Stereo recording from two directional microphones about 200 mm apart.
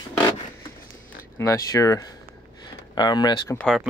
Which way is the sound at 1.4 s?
15° left (ahead or behind).